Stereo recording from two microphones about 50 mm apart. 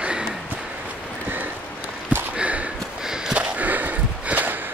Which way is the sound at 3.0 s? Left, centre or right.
Centre.